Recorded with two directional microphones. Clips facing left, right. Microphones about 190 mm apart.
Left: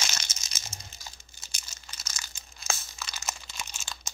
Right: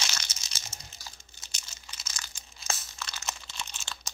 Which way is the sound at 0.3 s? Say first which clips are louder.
Left 1 dB; 50° left (ahead or behind).